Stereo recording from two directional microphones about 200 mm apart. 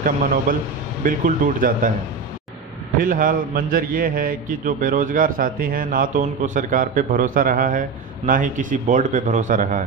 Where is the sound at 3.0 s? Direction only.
40° right (ahead or behind).